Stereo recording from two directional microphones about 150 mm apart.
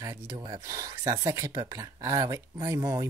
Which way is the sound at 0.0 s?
25° right (ahead or behind).